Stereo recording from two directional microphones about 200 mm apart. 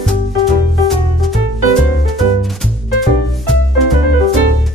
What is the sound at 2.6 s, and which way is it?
Music, centre (ahead or behind).